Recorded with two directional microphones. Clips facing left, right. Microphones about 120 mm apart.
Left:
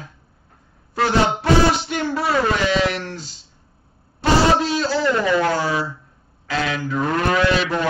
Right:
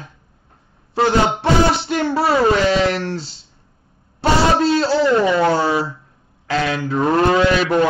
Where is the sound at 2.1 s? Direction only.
30° right (ahead or behind).